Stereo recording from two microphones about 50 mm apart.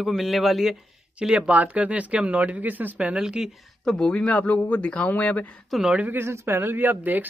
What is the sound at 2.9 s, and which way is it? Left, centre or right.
Speech, right.